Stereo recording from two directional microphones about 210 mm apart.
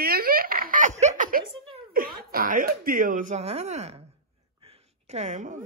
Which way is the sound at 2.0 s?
45° right (ahead or behind).